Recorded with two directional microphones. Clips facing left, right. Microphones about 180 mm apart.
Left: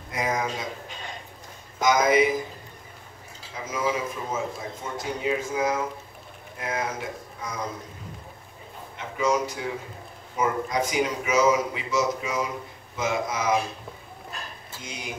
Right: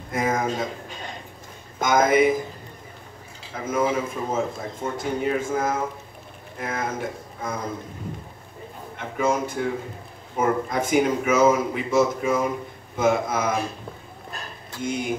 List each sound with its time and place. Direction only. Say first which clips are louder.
0.1 s a sound: right 4 dB; 50° right (ahead or behind)
1.8 s a man's voice: right 2 dB; 50° right (ahead or behind)
3.5 s a man's voice: right 4 dB; 50° right (ahead or behind)
8.9 s a man's voice: right 1 dB; 50° right (ahead or behind)
14.8 s a man's voice: right 12 dB; 50° right (ahead or behind)